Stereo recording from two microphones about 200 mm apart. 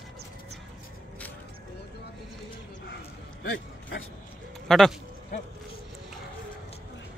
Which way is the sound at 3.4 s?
70° left (ahead or behind).